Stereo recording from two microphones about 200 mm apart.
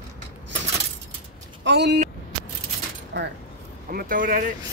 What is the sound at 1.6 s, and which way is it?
Speech, 55° right (ahead or behind).